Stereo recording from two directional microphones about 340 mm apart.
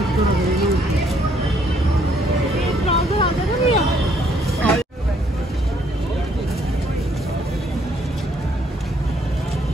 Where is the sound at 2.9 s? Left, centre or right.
Centre.